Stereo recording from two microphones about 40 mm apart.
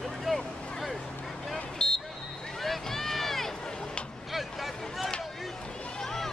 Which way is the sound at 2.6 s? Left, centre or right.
Centre.